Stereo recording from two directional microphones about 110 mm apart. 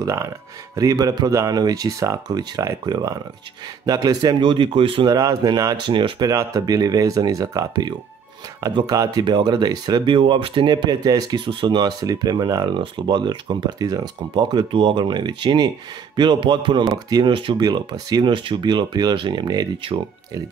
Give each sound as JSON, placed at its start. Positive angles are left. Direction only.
{"t": 0.7, "sound": "speech", "side_deg": -30}
{"t": 5.1, "sound": "speech", "side_deg": -35}
{"t": 5.9, "sound": "speech", "side_deg": -50}
{"t": 17.6, "sound": "speech", "side_deg": -35}